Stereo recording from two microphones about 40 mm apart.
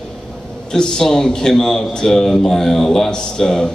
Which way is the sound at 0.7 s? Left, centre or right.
Centre.